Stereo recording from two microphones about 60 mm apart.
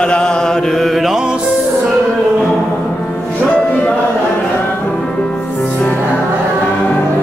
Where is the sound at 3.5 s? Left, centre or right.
Left.